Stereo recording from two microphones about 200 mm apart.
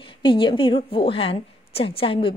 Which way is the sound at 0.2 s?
25° left (ahead or behind).